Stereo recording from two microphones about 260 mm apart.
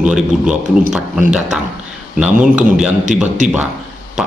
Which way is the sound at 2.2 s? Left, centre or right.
Centre.